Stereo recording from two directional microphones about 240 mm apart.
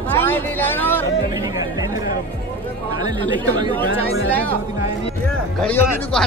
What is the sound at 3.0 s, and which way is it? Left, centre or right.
Chatter, centre.